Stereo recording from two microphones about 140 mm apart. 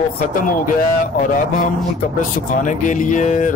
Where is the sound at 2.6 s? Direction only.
65° left (ahead or behind).